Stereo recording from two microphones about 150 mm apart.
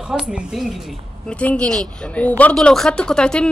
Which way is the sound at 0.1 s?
5° right (ahead or behind).